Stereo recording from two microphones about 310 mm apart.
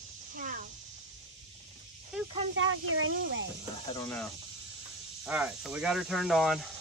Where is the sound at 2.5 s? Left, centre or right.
Right.